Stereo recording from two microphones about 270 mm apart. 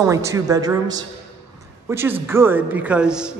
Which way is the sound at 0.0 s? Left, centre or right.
Centre.